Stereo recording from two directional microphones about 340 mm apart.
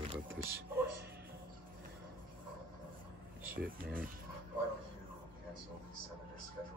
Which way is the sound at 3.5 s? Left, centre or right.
Right.